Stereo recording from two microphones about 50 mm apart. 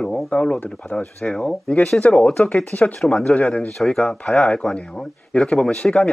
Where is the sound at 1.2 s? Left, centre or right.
Centre.